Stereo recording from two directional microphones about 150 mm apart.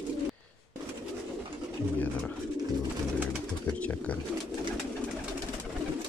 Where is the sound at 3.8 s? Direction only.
10° left (ahead or behind).